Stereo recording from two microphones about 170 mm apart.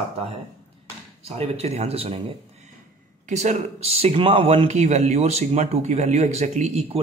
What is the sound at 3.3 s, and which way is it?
Speech, 40° right (ahead or behind).